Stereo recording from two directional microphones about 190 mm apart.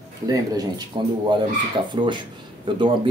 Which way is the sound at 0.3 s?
20° right (ahead or behind).